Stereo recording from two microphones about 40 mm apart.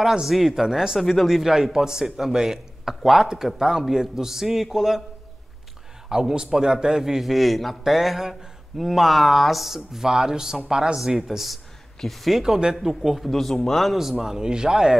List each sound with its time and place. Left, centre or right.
0.0 s a man's voice: centre
0.9 s a man's voice: centre
6.0 s a man's voice: centre
10.0 s a man's voice: centre
11.1 s a man's voice: centre
12.4 s a man's voice: centre
13.2 s a man's voice: centre
13.9 s a man's voice: centre